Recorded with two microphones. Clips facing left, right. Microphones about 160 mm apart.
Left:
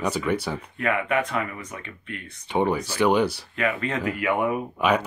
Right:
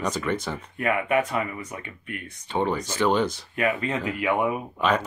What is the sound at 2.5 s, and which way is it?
Speech, 15° left (ahead or behind).